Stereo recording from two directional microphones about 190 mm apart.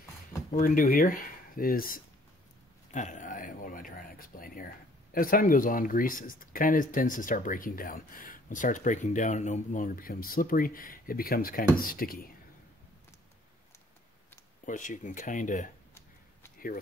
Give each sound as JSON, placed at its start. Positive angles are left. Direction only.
{"t": 0.5, "sound": "speech", "side_deg": 45}
{"t": 2.9, "sound": "a sound", "side_deg": 40}
{"t": 5.1, "sound": "speech", "side_deg": 50}
{"t": 14.7, "sound": "speech", "side_deg": 40}